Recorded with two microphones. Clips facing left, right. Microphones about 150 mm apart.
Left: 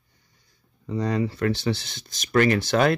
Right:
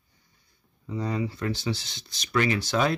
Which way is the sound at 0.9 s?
70° left (ahead or behind).